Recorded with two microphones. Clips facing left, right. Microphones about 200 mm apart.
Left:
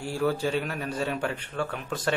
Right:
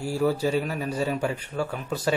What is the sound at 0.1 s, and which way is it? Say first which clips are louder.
A man's voice: right 3 dB; 5° right (ahead or behind).